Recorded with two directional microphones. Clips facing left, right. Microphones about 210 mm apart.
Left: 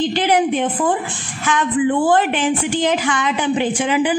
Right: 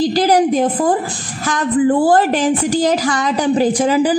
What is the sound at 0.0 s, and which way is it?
A woman's voice, 40° right (ahead or behind).